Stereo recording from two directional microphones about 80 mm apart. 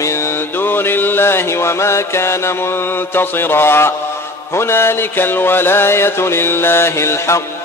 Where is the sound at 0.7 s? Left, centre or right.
Left.